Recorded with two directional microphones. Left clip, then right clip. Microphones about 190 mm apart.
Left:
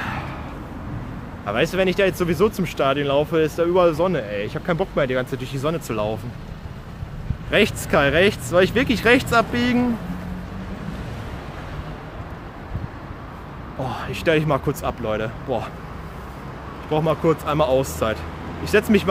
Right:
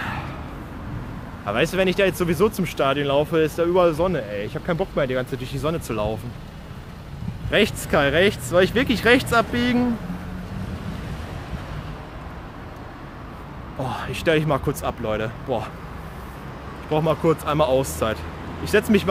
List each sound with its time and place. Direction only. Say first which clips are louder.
0.0 s a sound: left 1 dB; 10° right (ahead or behind)
1.4 s speech: left 1 dB; 15° right (ahead or behind)
7.5 s speech: left 1 dB; 5° right (ahead or behind)
13.7 s speech: even; 15° right (ahead or behind)
16.9 s speech: left 1 dB; 15° right (ahead or behind)